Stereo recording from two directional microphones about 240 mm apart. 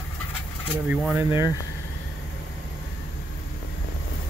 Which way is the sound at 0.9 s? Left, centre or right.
Centre.